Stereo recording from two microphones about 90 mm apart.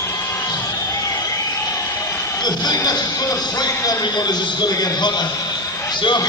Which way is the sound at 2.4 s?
50° left (ahead or behind).